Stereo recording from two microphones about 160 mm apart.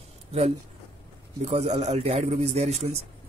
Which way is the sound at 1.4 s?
45° right (ahead or behind).